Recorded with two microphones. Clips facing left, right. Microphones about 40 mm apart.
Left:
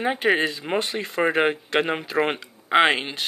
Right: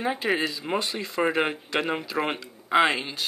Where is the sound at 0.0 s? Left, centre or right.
Left.